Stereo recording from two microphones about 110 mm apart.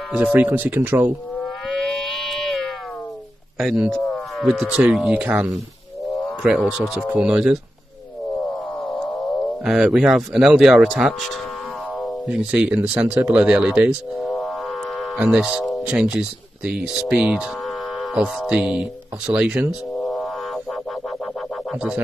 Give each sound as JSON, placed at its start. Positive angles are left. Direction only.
{"t": 0.1, "sound": "speech", "side_deg": -15}
{"t": 1.7, "sound": "a sound", "side_deg": 5}
{"t": 3.5, "sound": "speech", "side_deg": -5}
{"t": 6.2, "sound": "speech", "side_deg": 0}
{"t": 8.8, "sound": "speech", "side_deg": 0}
{"t": 15.0, "sound": "a sound", "side_deg": -5}
{"t": 15.9, "sound": "speech", "side_deg": -10}
{"t": 20.0, "sound": "music", "side_deg": 10}